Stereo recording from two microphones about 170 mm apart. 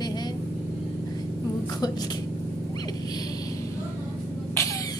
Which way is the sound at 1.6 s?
25° left (ahead or behind).